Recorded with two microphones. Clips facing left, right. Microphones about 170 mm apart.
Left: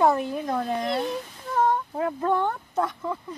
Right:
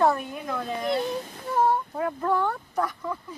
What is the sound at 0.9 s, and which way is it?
Child singing, 5° right (ahead or behind).